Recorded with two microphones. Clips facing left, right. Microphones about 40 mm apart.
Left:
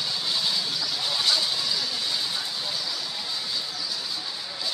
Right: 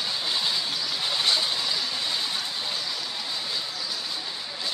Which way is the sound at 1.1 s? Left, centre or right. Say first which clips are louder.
Even; right.